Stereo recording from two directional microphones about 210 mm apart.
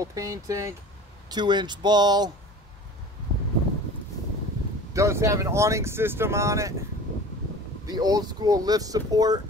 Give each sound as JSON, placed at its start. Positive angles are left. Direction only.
{"t": 0.0, "sound": "speech", "side_deg": -15}
{"t": 4.9, "sound": "speech", "side_deg": -15}
{"t": 7.8, "sound": "speech", "side_deg": -20}